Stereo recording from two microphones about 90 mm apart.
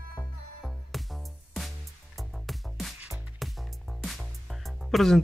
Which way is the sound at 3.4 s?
Centre (ahead or behind).